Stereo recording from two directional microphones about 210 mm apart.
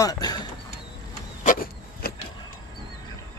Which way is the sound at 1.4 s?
40° left (ahead or behind).